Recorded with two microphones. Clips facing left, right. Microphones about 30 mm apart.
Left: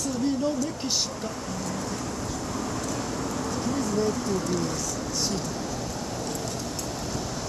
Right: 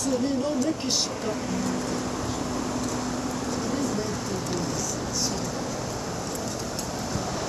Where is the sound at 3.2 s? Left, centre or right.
Right.